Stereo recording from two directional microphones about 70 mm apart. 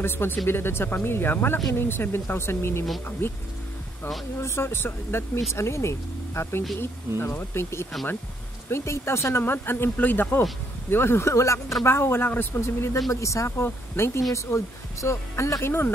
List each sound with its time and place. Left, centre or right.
0.0 s speech: left
4.4 s speech: left